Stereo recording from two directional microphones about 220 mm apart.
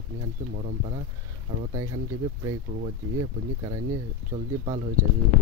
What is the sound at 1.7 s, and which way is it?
Speech, 15° right (ahead or behind).